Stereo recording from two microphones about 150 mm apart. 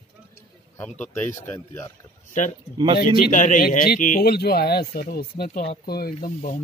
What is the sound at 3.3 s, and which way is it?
Speech, 55° left (ahead or behind).